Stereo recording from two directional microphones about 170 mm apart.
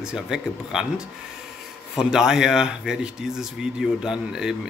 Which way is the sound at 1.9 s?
5° right (ahead or behind).